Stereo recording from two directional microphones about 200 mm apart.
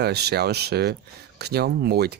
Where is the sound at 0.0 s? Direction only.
55° right (ahead or behind).